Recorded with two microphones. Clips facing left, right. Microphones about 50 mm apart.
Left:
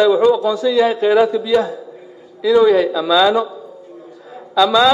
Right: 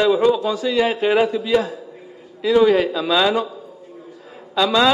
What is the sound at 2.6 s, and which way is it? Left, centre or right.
Speech, right.